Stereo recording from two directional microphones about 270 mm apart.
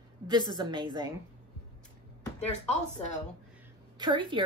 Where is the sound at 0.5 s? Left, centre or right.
Centre.